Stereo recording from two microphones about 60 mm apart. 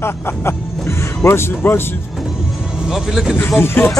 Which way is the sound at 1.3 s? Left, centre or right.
Left.